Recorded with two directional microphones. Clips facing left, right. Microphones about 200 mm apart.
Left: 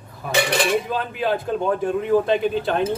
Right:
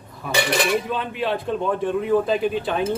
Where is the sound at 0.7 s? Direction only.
Centre (ahead or behind).